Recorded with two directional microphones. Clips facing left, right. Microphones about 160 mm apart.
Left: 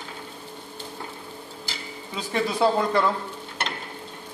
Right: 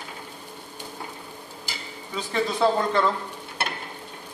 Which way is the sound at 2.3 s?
10° left (ahead or behind).